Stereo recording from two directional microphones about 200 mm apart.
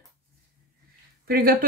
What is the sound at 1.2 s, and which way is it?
Speech, 50° right (ahead or behind).